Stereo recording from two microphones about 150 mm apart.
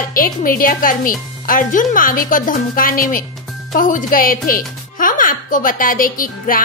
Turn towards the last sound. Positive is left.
turn(degrees=65)  # may be behind; listen again after turning